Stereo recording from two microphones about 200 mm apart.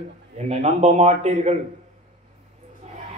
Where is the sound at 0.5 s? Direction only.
30° right (ahead or behind).